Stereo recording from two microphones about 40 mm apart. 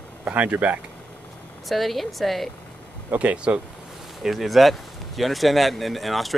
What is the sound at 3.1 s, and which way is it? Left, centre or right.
Speech, right.